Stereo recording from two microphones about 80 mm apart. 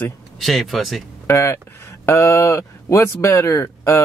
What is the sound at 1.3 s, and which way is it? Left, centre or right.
Speech, left.